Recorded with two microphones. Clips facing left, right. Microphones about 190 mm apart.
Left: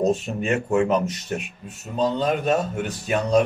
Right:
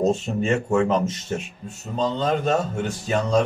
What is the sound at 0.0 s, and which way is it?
A man's voice, 15° left (ahead or behind).